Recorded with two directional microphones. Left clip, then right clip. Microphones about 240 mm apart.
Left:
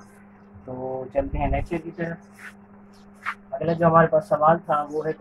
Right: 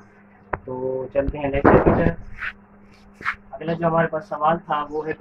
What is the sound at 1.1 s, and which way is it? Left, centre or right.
Speech, centre.